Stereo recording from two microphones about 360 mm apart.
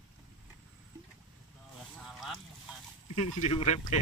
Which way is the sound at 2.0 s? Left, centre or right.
Centre.